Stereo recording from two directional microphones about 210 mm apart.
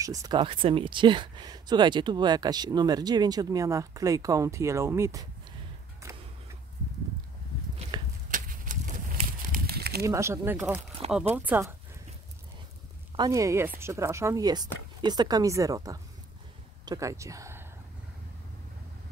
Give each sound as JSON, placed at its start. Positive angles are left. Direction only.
{"t": 0.0, "sound": "speech", "side_deg": -15}
{"t": 6.0, "sound": "a sound", "side_deg": -15}
{"t": 8.3, "sound": "a sound", "side_deg": -40}
{"t": 10.0, "sound": "speech", "side_deg": -15}
{"t": 11.0, "sound": "speech", "side_deg": -25}
{"t": 11.3, "sound": "speech", "side_deg": -5}
{"t": 13.1, "sound": "speech", "side_deg": -15}